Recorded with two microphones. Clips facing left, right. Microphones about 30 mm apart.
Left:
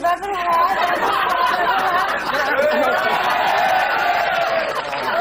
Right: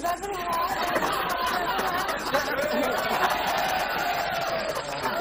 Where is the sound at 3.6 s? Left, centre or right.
Left.